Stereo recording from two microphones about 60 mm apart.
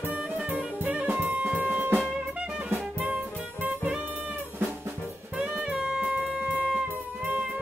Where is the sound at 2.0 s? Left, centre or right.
Right.